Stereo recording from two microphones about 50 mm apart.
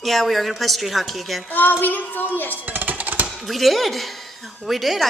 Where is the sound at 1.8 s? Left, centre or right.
Left.